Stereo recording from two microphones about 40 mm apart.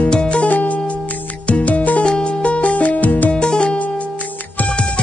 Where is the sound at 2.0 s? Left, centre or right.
Left.